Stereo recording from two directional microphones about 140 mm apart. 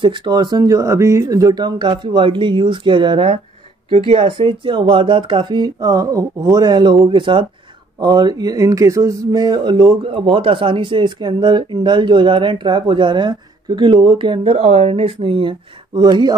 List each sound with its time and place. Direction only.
0.0 s speech: 35° right (ahead or behind)